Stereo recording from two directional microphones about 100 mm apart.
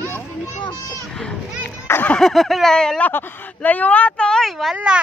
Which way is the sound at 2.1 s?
Centre (ahead or behind).